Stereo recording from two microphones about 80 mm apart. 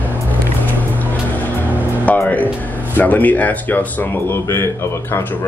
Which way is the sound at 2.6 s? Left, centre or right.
Left.